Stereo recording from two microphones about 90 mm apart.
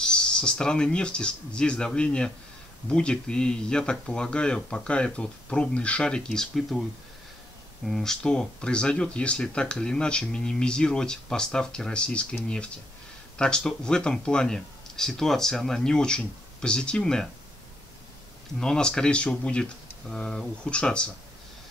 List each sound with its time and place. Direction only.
0.0 s speech: 10° left (ahead or behind)
7.8 s speech: 5° left (ahead or behind)
18.6 s speech: 10° left (ahead or behind)